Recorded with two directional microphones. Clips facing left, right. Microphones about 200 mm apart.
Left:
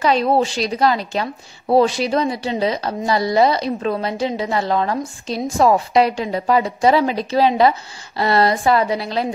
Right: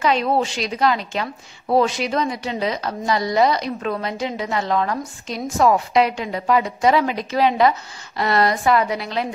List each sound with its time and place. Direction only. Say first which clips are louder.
0.0 s a woman's voice: left 3 dB; 35° left (ahead or behind)